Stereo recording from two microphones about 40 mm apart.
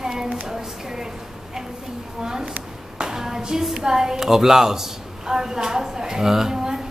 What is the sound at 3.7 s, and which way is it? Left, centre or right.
A woman's voice, centre.